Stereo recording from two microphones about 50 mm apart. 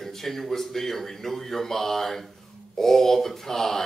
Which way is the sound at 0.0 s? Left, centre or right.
Centre.